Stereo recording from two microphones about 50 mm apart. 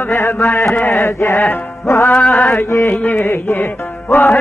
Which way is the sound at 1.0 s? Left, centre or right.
Left.